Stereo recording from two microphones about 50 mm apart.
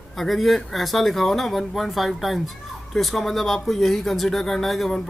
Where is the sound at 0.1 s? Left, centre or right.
Centre.